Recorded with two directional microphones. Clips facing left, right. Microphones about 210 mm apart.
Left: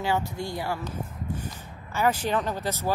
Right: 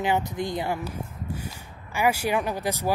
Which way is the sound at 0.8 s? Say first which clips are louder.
Even; 10° right (ahead or behind).